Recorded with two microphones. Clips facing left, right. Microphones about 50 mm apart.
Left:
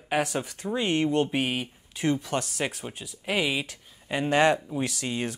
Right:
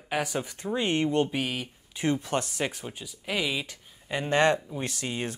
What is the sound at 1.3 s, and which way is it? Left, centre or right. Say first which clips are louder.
Speech: left 3 dB; centre.